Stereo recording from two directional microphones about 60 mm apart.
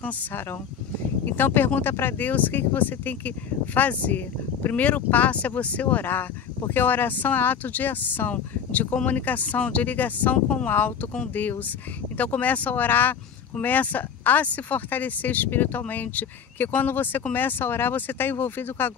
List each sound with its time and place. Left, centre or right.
1.2 s speech: left
12.2 s speech: left